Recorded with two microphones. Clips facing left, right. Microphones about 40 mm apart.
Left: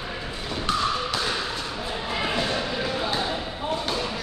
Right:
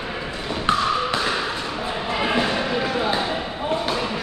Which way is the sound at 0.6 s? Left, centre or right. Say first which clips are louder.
Right 5 dB; right.